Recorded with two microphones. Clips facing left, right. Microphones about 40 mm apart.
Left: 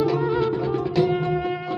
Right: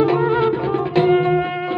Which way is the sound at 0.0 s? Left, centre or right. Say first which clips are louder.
Right 5 dB; right.